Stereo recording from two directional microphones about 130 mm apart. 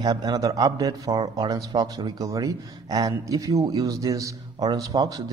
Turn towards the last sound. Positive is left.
turn(degrees=-30)  # may be behind; listen again after turning